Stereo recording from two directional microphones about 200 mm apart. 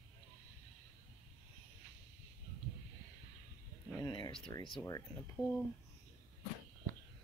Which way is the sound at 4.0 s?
25° left (ahead or behind).